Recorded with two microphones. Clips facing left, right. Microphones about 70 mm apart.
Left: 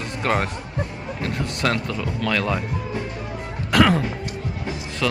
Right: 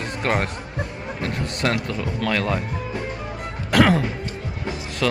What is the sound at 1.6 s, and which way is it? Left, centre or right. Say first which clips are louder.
Speech: even; right.